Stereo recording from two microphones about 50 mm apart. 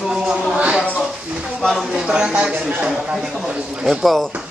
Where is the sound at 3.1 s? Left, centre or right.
Centre.